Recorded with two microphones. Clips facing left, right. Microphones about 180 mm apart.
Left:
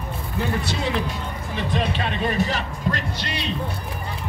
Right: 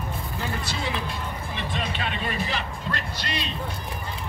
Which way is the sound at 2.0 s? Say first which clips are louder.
Left 6 dB; 45° left (ahead or behind).